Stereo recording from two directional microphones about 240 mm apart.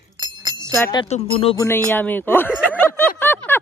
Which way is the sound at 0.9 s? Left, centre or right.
Left.